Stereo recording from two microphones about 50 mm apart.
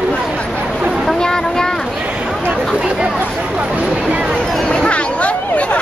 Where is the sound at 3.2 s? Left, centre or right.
Right.